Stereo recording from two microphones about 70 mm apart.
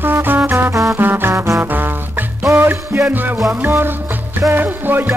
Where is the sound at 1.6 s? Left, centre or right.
Right.